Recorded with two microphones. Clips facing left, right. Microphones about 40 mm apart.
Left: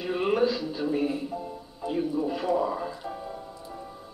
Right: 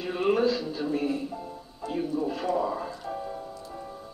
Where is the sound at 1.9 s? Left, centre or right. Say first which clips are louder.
Left 1 dB; centre.